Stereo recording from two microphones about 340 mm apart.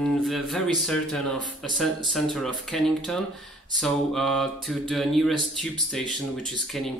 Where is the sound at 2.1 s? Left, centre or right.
Centre.